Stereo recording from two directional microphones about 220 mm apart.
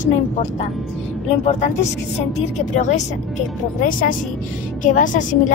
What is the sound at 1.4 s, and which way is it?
Speech, 30° left (ahead or behind).